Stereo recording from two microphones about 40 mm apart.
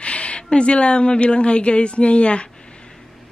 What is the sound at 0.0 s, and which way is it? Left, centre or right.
Speech, left.